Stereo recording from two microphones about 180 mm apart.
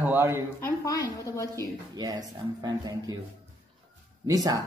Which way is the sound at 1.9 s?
20° right (ahead or behind).